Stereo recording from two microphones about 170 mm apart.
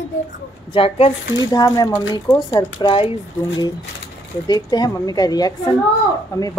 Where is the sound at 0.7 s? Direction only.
30° left (ahead or behind).